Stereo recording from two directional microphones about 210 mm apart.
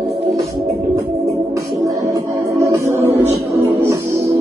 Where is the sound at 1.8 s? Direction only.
15° right (ahead or behind).